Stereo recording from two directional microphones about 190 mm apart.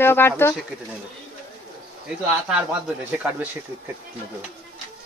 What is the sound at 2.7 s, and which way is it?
Speech, 10° right (ahead or behind).